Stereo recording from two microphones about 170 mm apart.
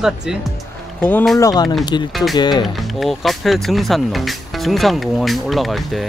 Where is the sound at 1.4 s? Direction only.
25° left (ahead or behind).